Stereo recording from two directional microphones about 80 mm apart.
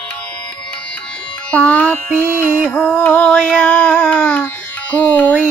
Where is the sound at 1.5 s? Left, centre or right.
Centre.